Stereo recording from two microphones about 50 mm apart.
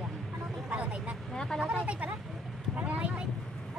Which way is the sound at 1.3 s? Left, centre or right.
Centre.